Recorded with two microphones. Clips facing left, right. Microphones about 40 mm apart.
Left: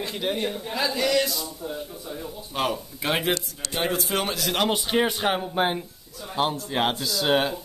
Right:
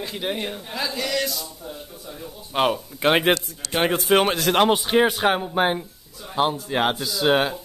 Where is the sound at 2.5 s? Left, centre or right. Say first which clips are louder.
Right 6 dB; right.